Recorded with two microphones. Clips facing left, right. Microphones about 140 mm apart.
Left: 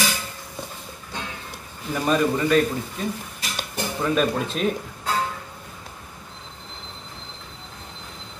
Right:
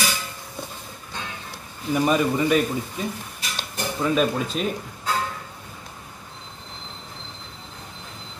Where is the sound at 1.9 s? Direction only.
10° right (ahead or behind).